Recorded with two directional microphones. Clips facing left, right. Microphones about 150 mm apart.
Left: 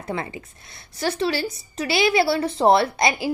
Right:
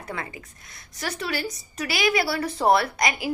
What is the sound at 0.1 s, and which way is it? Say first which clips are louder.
A woman's voice: left 6 dB; 25° left (ahead or behind).